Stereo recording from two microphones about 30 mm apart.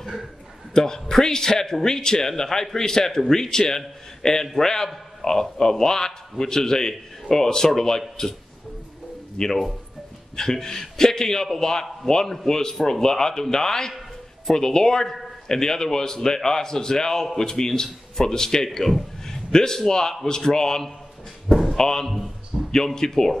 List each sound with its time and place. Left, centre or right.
0.7 s a man's voice: left
9.4 s a man's voice: left